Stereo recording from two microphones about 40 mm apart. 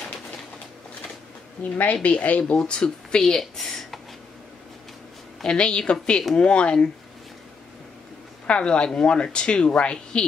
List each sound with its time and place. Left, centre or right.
1.6 s speech: left
2.5 s speech: left
3.2 s speech: centre
5.6 s speech: left
8.5 s speech: left